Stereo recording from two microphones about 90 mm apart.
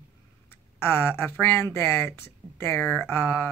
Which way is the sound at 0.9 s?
25° left (ahead or behind).